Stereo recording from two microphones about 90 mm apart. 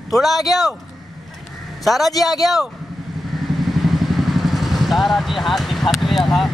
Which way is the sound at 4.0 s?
Centre (ahead or behind).